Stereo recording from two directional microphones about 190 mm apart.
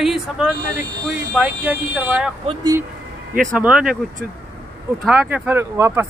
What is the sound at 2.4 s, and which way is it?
Speech, 20° right (ahead or behind).